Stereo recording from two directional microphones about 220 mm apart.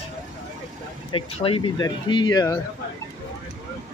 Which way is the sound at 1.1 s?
25° left (ahead or behind).